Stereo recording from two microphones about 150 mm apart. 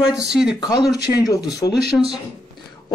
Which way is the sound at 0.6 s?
25° left (ahead or behind).